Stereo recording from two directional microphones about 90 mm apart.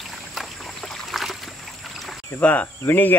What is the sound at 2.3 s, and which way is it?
Speech, 15° left (ahead or behind).